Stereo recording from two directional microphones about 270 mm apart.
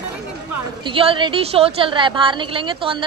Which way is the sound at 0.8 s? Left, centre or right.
Centre.